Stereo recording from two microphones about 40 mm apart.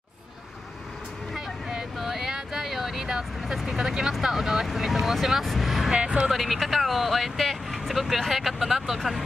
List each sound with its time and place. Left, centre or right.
1.3 s vehicle: centre
3.3 s speech: centre
5.9 s speech: right
6.3 s speech: centre